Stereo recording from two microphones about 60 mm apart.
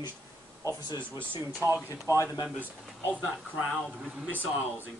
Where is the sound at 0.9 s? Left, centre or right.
Right.